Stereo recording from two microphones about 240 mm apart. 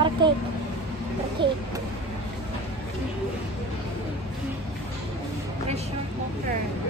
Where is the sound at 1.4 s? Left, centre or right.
Right.